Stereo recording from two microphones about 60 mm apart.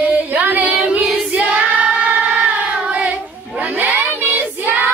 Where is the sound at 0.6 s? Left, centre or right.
Centre.